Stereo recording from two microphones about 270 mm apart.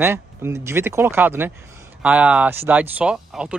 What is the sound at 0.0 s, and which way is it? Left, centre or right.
Speech, centre.